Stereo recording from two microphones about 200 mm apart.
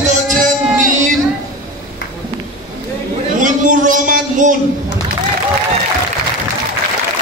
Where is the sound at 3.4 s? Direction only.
40° right (ahead or behind).